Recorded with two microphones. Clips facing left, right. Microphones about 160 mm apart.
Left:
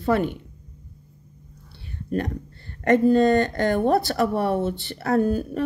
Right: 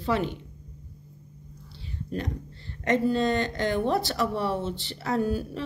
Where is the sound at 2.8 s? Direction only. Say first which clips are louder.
Left 7 dB; 50° left (ahead or behind).